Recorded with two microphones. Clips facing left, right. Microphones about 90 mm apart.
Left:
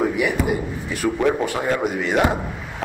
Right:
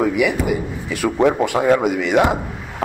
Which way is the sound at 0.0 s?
85° right.